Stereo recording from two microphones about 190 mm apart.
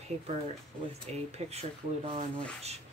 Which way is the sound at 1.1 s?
35° right (ahead or behind).